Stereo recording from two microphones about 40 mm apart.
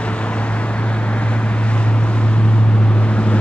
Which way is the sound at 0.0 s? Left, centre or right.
Left.